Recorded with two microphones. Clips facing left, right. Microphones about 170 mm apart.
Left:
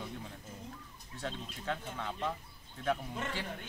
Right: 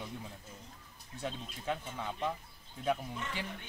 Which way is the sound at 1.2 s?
15° right (ahead or behind).